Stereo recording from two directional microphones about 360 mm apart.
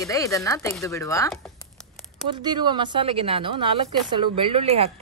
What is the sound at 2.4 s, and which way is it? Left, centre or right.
A woman's voice, centre.